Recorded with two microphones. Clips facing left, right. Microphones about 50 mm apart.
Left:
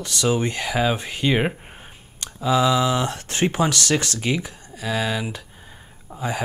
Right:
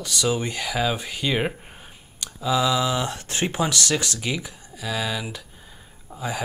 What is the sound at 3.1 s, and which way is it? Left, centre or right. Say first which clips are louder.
Speech: left 4 dB; left.